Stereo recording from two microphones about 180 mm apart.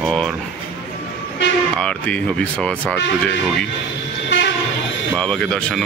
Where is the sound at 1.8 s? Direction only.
5° left (ahead or behind).